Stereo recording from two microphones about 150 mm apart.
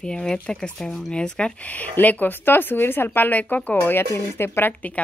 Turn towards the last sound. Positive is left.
turn(degrees=10)  # may be behind; listen again after turning